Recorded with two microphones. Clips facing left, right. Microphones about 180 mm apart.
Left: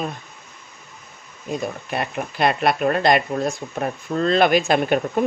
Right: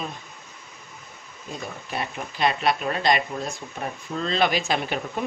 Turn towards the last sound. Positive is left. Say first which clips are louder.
# left 8 dB
turn(degrees=50)  # may be behind; listen again after turning